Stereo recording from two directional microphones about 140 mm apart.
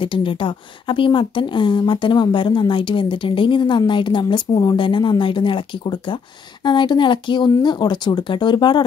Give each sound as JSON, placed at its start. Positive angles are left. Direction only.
{"t": 0.0, "sound": "speech", "side_deg": 35}